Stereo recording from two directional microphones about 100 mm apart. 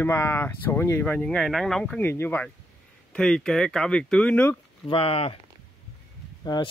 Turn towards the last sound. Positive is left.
turn(degrees=45)  # may be behind; listen again after turning